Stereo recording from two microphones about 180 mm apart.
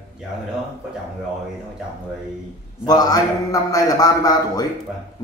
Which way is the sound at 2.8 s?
20° left (ahead or behind).